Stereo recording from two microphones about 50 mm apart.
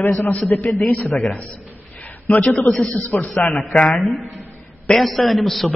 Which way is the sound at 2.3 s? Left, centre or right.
Left.